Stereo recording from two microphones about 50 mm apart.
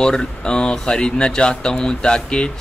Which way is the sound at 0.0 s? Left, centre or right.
Centre.